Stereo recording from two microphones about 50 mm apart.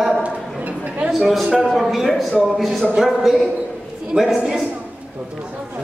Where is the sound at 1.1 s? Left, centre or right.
Centre.